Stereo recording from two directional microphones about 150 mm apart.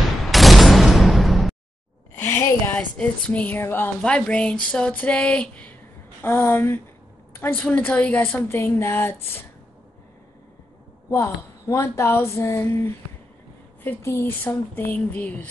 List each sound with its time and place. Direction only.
0.2 s a sound: centre (ahead or behind)
2.2 s speech: 15° left (ahead or behind)
11.1 s speech: 20° left (ahead or behind)
13.8 s speech: 15° left (ahead or behind)